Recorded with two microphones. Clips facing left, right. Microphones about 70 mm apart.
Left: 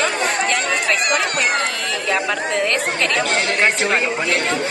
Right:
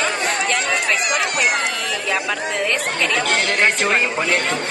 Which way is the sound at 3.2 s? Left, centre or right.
Right.